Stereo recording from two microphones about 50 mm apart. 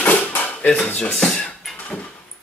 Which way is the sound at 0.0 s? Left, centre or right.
Left.